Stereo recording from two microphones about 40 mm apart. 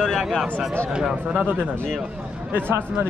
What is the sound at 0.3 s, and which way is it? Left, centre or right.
Speech, centre.